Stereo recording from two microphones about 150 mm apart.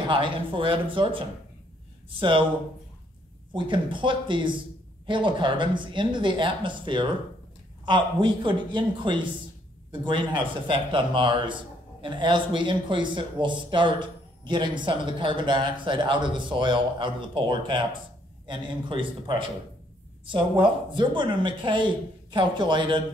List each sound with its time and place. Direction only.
0.1 s speech: 35° right (ahead or behind)
3.5 s speech: 35° right (ahead or behind)
20.9 s speech: 30° right (ahead or behind)